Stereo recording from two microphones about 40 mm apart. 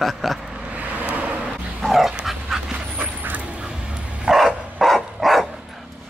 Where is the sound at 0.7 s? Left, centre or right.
Right.